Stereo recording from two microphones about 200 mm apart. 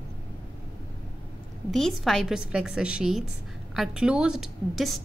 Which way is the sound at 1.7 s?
Centre (ahead or behind).